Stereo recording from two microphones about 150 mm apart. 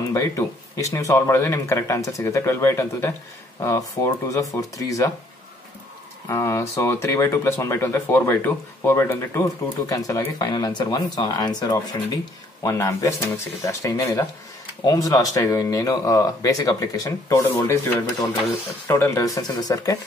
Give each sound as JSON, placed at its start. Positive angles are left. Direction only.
{"t": 0.1, "sound": "speech", "side_deg": 20}
{"t": 6.2, "sound": "speech", "side_deg": 20}